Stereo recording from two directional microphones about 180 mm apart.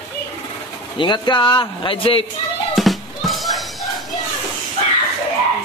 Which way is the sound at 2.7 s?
Centre (ahead or behind).